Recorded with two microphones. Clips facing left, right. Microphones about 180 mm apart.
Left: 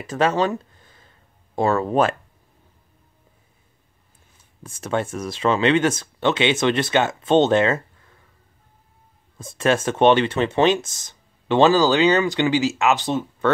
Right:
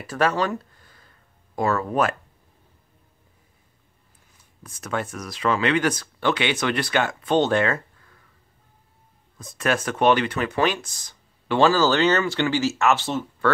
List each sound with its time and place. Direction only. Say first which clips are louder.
0.0 s a sound: left 3 dB; 20° left (ahead or behind)
4.6 s speech: left 4 dB; 25° left (ahead or behind)
9.4 s speech: left 4 dB; 25° left (ahead or behind)